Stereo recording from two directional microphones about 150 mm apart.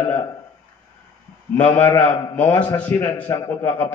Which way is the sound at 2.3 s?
10° left (ahead or behind).